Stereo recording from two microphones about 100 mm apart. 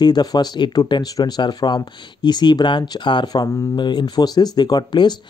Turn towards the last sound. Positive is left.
turn(degrees=45)  # may be behind; listen again after turning